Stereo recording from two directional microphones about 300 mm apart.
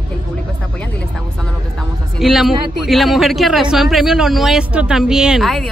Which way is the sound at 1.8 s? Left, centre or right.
Centre.